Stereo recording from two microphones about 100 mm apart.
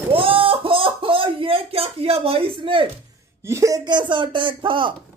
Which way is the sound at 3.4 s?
30° right (ahead or behind).